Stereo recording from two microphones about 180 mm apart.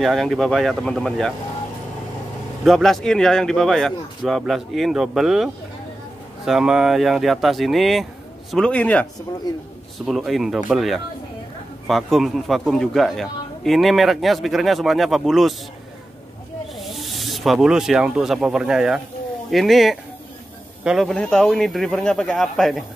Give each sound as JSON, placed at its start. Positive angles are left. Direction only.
{"t": 0.0, "sound": "a man's voice", "side_deg": 0}
{"t": 2.6, "sound": "a man's voice", "side_deg": 0}
{"t": 9.5, "sound": "a man's voice", "side_deg": 20}
{"t": 9.9, "sound": "a man's voice", "side_deg": 0}
{"t": 16.7, "sound": "a man's voice", "side_deg": 0}